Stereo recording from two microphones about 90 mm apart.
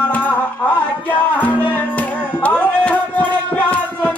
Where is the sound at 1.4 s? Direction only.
20° left (ahead or behind).